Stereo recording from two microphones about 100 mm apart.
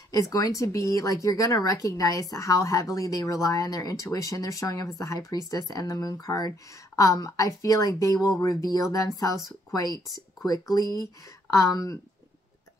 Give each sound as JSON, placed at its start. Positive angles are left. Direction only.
{"t": 0.1, "sound": "speech", "side_deg": 35}